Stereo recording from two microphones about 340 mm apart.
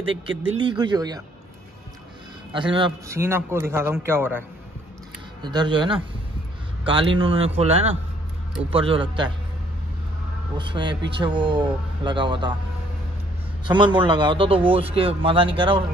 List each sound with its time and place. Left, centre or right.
0.4 s speech: centre
2.7 s speech: centre
10.6 s speech: centre
13.7 s speech: centre